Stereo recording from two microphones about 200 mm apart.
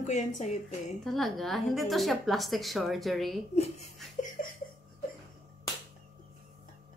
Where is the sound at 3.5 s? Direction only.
30° left (ahead or behind).